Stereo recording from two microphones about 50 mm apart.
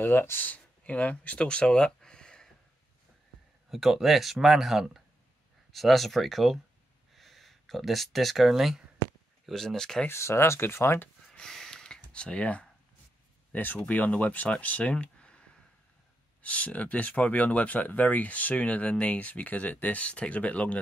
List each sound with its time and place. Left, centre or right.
0.0 s speech: left
0.5 s speech: left
2.0 s a sound: centre
3.7 s speech: centre
9.5 s speech: centre
10.1 s speech: left
11.3 s a sound: centre
12.0 s speech: left
13.5 s speech: left